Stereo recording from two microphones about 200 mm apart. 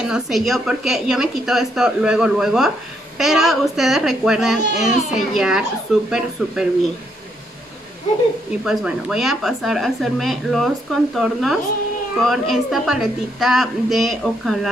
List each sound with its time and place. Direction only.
0.0 s speech: centre (ahead or behind)
8.6 s speech: 5° right (ahead or behind)